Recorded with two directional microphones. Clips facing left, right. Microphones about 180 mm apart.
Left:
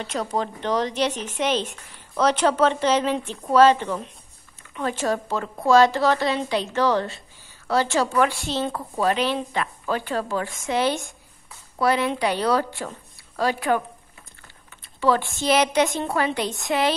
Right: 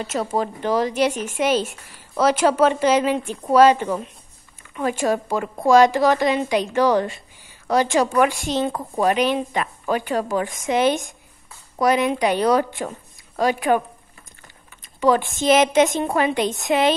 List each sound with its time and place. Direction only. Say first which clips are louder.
0.0 s a woman's voice: right 3 dB; 5° right (ahead or behind)
15.0 s a woman's voice: right 3 dB; 15° right (ahead or behind)